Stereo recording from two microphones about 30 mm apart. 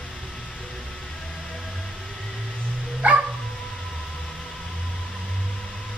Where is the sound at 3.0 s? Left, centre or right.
Right.